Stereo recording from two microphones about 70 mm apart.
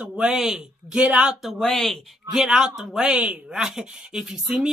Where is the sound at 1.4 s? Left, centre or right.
Centre.